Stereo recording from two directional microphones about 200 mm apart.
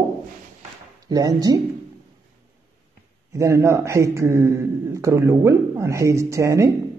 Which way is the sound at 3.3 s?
15° right (ahead or behind).